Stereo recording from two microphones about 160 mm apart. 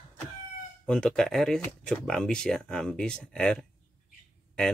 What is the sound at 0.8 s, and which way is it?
Speech, 5° left (ahead or behind).